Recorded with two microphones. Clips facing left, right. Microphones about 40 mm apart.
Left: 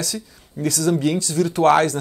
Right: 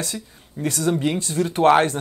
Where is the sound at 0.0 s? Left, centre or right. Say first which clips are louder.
Left 1 dB; right.